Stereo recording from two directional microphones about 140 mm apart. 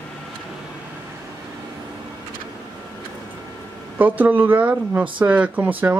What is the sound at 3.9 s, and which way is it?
Speech, 10° right (ahead or behind).